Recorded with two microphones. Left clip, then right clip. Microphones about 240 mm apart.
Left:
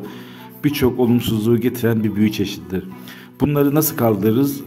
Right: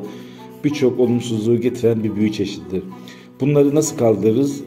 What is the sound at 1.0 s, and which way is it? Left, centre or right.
A man's voice, left.